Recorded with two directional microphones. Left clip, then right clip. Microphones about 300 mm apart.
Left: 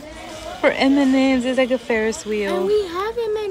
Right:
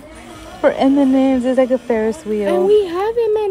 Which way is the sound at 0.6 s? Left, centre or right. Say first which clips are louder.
Right 3 dB; centre.